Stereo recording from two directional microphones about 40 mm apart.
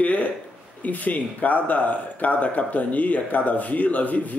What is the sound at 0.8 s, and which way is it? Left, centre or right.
Speech, left.